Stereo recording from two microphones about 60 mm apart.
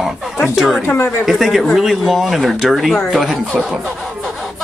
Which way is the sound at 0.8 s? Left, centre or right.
Left.